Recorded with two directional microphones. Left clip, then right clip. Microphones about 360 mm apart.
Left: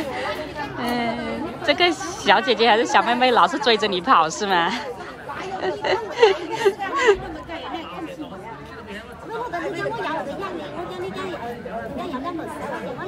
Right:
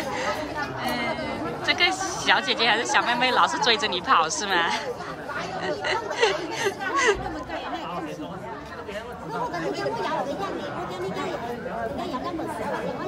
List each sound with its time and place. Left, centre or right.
0.7 s a woman's voice: centre
9.5 s chatter: centre